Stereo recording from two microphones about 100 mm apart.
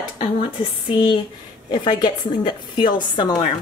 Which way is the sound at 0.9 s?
50° left (ahead or behind).